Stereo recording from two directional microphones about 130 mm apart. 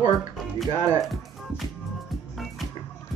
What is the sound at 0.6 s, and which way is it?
Speech, 25° right (ahead or behind).